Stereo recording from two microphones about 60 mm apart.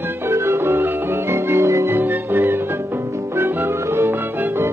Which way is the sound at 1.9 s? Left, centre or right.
Right.